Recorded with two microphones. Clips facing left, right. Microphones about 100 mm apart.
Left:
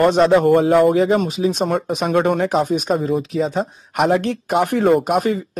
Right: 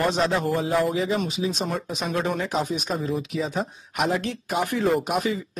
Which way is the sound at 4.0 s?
55° left (ahead or behind).